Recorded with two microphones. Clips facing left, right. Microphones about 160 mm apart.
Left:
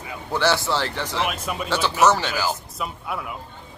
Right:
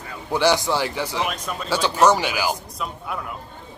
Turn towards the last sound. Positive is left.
turn(degrees=5)  # may be behind; listen again after turning